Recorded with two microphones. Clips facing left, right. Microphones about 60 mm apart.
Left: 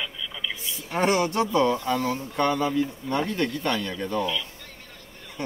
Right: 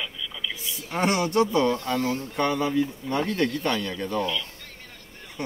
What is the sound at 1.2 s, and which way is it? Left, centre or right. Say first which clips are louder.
Speech: right 1 dB; left.